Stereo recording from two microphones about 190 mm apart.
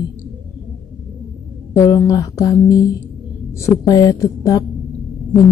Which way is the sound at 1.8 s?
15° left (ahead or behind).